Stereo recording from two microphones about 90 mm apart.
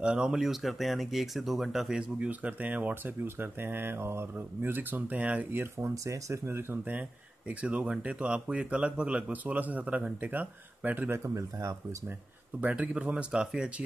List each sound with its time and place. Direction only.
0.0 s speech: 10° right (ahead or behind)
11.1 s speech: 35° right (ahead or behind)
12.5 s speech: 15° right (ahead or behind)